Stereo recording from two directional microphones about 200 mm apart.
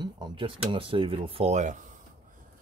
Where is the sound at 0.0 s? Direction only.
20° right (ahead or behind); by 1.9 s 35° right (ahead or behind).